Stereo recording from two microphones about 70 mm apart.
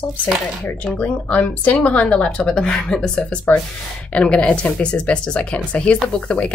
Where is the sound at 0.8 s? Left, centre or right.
Left.